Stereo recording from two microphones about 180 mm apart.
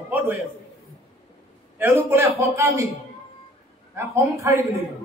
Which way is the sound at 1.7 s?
10° right (ahead or behind).